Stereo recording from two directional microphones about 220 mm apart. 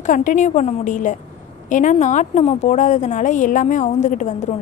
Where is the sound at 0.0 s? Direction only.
35° left (ahead or behind).